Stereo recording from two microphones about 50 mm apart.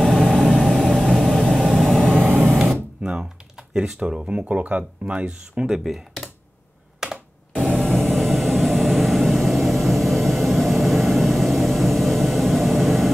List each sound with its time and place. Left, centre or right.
0.0 s vehicle: centre
2.5 s a sound: centre
3.0 s typing: centre
3.7 s speech: centre
5.7 s speech: centre
7.0 s computer keyboard: centre
7.5 s a sound: centre